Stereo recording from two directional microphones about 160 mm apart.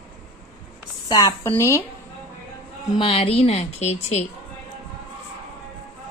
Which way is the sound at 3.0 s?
40° left (ahead or behind).